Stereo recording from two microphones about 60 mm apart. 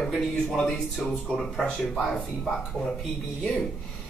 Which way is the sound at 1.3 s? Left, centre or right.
Centre.